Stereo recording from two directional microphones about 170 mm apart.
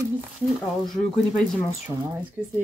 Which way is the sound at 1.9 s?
15° right (ahead or behind).